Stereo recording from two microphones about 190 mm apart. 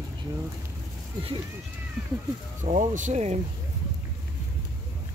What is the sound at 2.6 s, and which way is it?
Speech, 40° right (ahead or behind).